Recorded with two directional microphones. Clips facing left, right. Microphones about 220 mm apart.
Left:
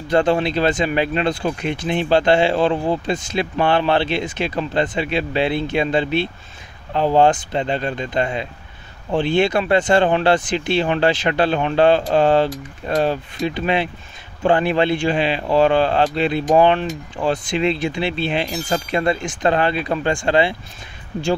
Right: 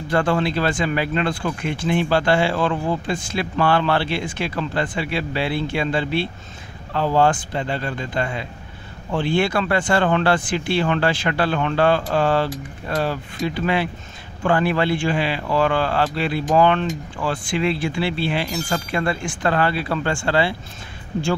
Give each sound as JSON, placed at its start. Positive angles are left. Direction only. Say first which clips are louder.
{"t": 0.1, "sound": "speech", "louder": "left 3 dB", "side_deg": 20}